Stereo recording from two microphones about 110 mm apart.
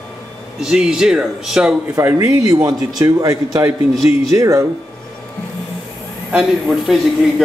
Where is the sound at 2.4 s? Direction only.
35° right (ahead or behind).